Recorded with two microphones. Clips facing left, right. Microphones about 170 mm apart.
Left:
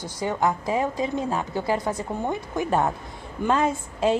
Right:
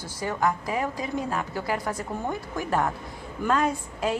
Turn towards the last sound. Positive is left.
turn(degrees=25)  # may be behind; listen again after turning